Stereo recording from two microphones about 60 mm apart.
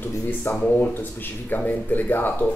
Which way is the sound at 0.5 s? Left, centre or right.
Left.